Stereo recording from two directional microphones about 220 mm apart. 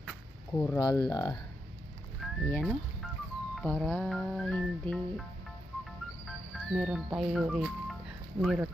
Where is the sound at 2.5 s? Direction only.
Centre (ahead or behind).